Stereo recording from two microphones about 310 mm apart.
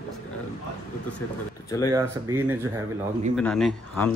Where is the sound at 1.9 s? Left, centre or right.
Centre.